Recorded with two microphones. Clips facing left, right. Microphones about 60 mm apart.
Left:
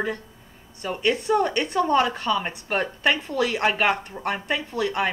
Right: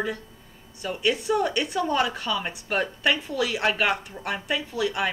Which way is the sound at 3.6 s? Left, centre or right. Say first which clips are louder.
Left 1 dB; left.